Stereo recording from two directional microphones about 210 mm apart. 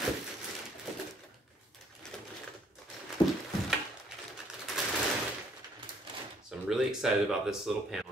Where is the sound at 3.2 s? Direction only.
20° left (ahead or behind).